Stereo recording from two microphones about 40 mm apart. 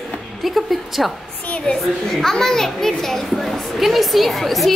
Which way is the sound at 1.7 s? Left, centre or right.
Left.